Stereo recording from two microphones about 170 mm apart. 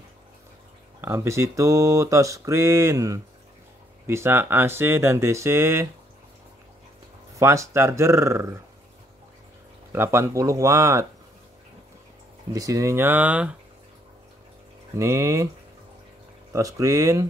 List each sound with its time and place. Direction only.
1.0 s speech: 15° right (ahead or behind)
7.3 s speech: 20° right (ahead or behind)
9.9 s speech: 15° right (ahead or behind)
12.5 s speech: 20° right (ahead or behind)
15.0 s speech: 15° right (ahead or behind)
16.5 s speech: 20° right (ahead or behind)